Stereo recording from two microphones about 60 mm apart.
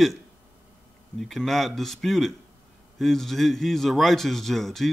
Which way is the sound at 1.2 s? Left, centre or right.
Centre.